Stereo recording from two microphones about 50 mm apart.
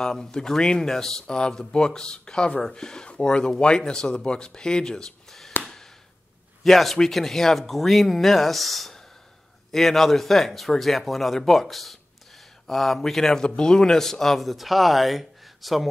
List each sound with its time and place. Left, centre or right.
0.0 s speech: centre
5.6 s a sound: centre
6.6 s speech: centre